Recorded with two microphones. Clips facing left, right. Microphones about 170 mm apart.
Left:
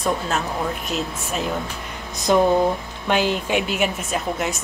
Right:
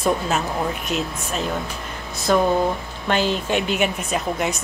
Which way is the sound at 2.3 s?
15° left (ahead or behind).